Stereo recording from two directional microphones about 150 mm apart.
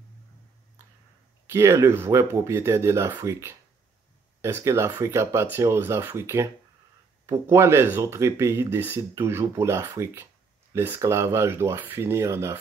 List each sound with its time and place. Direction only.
1.5 s speech: 20° right (ahead or behind)